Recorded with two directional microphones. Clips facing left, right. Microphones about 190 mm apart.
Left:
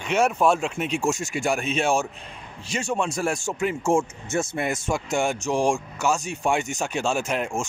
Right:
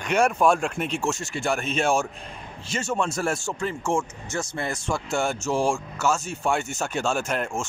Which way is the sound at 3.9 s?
25° left (ahead or behind).